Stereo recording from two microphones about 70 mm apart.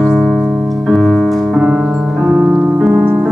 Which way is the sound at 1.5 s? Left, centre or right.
Centre.